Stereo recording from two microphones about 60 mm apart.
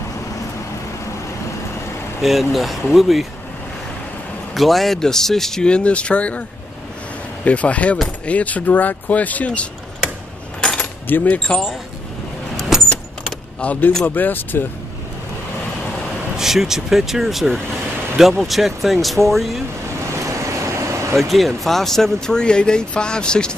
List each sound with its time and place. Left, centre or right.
2.2 s speech: centre
4.6 s speech: centre; by 6.4 s left
7.4 s speech: left
10.8 s keys jangling: left
11.3 s speech: centre
12.5 s vehicle: centre
13.6 s speech: left
16.3 s speech: centre
20.2 s vehicle: right
21.2 s speech: centre